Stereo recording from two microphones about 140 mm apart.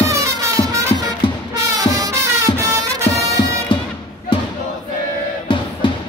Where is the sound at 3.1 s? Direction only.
35° left (ahead or behind).